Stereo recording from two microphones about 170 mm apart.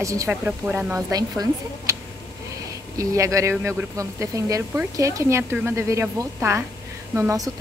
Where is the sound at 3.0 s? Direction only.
20° right (ahead or behind).